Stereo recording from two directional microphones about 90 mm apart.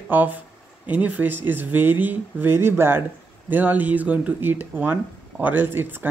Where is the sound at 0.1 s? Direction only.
20° right (ahead or behind).